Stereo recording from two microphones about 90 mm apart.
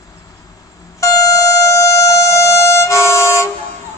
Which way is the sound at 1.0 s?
40° left (ahead or behind).